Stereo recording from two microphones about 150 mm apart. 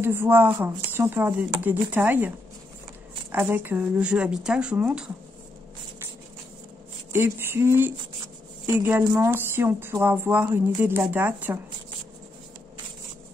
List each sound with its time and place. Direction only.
0.0 s speech: 15° right (ahead or behind)
7.1 s a sound: 15° right (ahead or behind)
8.6 s speech: 15° right (ahead or behind)